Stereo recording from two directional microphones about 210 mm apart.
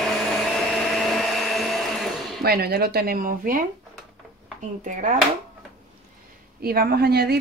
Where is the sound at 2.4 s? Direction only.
45° right (ahead or behind).